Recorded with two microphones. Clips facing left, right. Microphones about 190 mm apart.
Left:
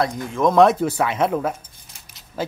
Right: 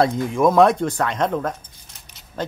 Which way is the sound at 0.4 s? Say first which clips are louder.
Even; 5° right (ahead or behind).